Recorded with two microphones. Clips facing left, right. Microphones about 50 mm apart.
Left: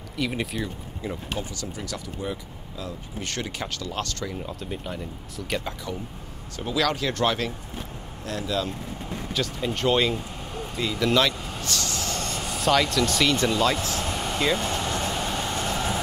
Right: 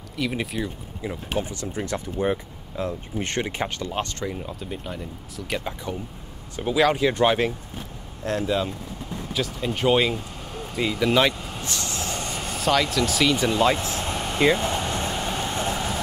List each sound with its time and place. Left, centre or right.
0.2 s speech: centre
1.3 s speech: right
4.4 s speech: centre
5.5 s speech: centre
9.3 s speech: centre
13.6 s speech: right
14.1 s a sound: centre
14.4 s vehicle: centre